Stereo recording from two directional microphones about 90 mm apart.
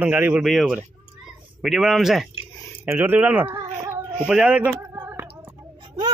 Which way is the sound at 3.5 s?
30° right (ahead or behind).